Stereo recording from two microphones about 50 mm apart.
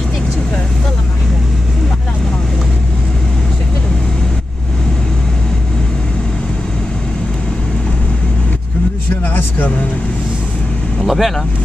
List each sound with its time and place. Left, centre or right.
9.2 s vehicle: left
11.0 s speech: centre